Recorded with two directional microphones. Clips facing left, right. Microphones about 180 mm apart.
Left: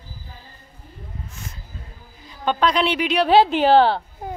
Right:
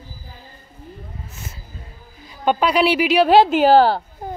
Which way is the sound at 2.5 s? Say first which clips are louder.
Right 3 dB; 10° right (ahead or behind).